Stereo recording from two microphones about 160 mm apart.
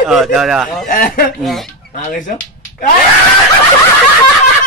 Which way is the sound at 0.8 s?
60° left (ahead or behind).